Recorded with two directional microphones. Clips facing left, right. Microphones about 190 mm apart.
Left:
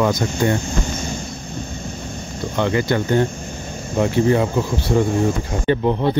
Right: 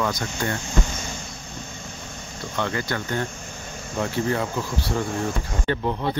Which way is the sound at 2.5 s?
20° left (ahead or behind).